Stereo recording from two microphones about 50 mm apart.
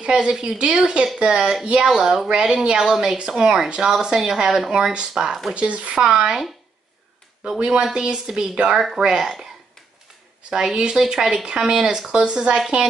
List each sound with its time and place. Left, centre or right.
0.0 s speech: centre
5.5 s speech: right
7.4 s speech: centre
10.5 s speech: centre